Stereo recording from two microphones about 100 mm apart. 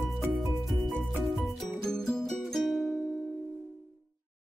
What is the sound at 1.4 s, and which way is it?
Music, 5° left (ahead or behind).